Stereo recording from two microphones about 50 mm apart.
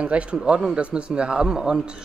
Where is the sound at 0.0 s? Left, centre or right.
Right.